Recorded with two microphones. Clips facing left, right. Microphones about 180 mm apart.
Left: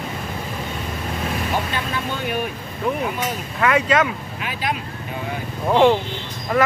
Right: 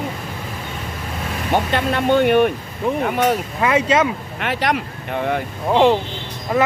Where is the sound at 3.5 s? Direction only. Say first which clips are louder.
Left 2 dB; 20° right (ahead or behind).